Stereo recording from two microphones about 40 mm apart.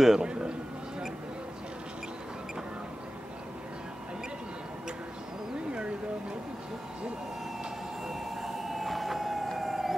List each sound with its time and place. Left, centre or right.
0.0 s a man's voice: centre
0.3 s a man's voice: right
5.7 s a sound: right
8.1 s siren: centre